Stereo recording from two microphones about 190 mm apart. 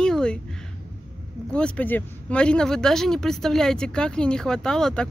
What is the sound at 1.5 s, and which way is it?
Speech, 5° left (ahead or behind).